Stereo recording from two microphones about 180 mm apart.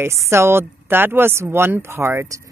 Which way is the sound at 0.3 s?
15° right (ahead or behind).